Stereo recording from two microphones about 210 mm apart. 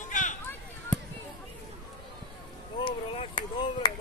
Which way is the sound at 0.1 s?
35° left (ahead or behind).